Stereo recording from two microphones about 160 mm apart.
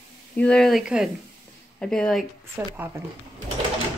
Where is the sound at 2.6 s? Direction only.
10° right (ahead or behind).